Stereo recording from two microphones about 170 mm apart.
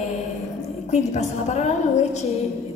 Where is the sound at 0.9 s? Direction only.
45° left (ahead or behind).